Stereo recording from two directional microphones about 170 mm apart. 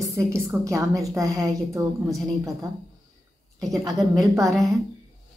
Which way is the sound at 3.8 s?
20° right (ahead or behind).